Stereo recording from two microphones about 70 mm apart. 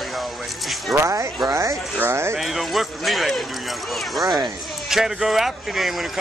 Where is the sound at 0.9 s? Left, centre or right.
Right.